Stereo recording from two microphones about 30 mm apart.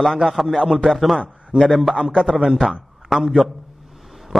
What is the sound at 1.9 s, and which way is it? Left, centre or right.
A man's voice, centre.